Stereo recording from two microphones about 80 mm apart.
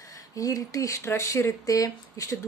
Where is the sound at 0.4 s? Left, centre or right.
Left.